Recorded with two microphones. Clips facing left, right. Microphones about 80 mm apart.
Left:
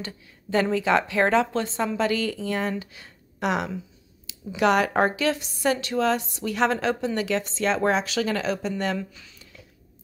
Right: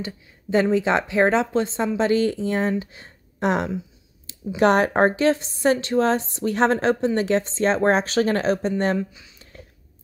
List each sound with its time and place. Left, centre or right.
0.0 s a woman's voice: centre; by 8.9 s right
8.9 s a woman's voice: centre